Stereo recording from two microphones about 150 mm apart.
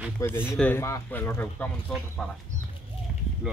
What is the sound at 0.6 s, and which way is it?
Speech, 15° left (ahead or behind).